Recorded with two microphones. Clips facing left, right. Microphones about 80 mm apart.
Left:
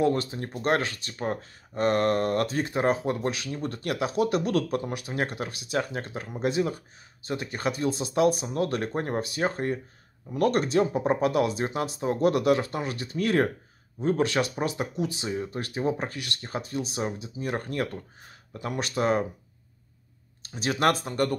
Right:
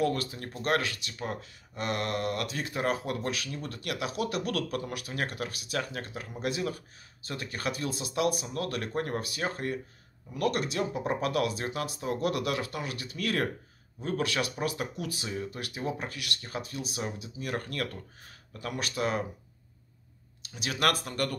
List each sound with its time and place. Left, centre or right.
0.0 s speech: left
20.4 s speech: left